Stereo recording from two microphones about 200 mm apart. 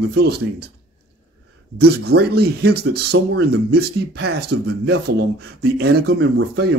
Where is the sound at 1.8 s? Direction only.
55° right (ahead or behind).